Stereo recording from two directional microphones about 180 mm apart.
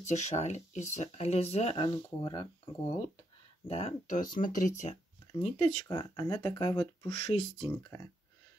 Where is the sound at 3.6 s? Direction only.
35° left (ahead or behind).